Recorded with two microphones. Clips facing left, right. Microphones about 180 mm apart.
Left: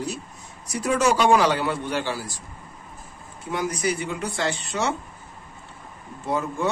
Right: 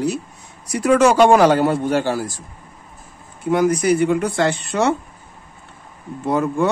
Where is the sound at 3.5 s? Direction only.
55° right (ahead or behind).